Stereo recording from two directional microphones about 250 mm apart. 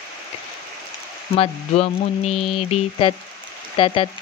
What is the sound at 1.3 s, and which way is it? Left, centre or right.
Speech, left.